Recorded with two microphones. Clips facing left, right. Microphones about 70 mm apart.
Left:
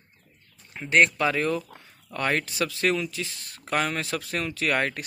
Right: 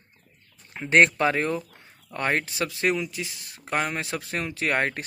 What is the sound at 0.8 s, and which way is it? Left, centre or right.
Speech, right.